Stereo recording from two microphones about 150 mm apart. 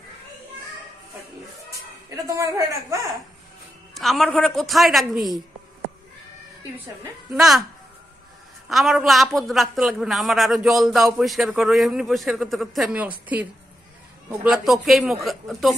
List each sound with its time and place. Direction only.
2.0 s speech: 20° right (ahead or behind)
3.9 s a man's voice: centre (ahead or behind)
7.3 s a man's voice: centre (ahead or behind)
8.6 s a man's voice: centre (ahead or behind)
14.4 s a man's voice: 5° right (ahead or behind)